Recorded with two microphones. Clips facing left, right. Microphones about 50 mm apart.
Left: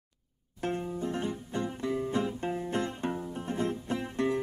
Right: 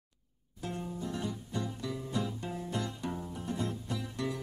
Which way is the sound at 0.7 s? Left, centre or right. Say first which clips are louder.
Left 6 dB; left.